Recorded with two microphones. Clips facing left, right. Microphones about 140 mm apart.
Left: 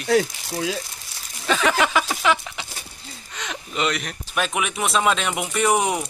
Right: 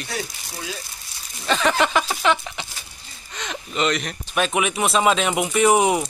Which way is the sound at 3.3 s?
10° left (ahead or behind).